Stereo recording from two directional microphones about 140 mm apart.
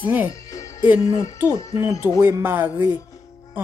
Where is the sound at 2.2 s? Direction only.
15° right (ahead or behind).